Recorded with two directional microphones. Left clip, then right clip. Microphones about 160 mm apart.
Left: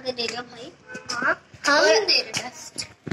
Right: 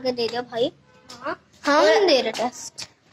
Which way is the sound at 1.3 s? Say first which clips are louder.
Left 1 dB; 90° right.